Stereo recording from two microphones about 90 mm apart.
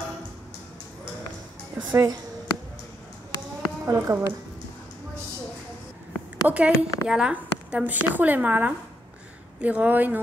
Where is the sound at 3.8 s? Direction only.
30° right (ahead or behind).